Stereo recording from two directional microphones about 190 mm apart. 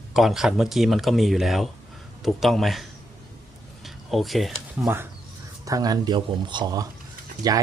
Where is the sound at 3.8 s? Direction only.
Centre (ahead or behind).